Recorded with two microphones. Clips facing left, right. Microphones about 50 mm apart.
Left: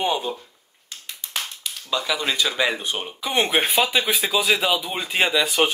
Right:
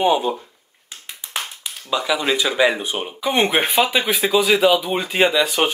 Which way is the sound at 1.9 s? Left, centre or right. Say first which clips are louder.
Right 4 dB; centre.